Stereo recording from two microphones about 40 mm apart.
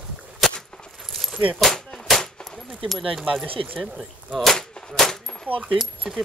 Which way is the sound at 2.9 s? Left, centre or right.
Centre.